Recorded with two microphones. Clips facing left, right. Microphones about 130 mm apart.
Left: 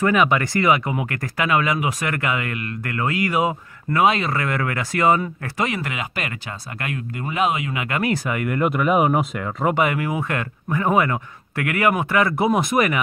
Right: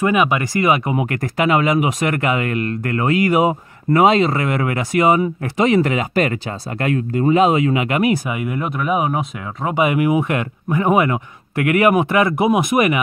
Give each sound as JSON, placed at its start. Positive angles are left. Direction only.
{"t": 0.0, "sound": "speech", "side_deg": -15}
{"t": 9.8, "sound": "speech", "side_deg": -15}